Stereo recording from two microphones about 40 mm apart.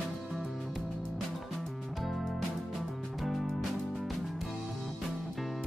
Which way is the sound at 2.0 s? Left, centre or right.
Centre.